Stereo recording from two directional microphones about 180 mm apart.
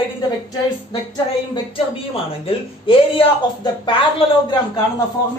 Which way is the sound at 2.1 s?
30° left (ahead or behind).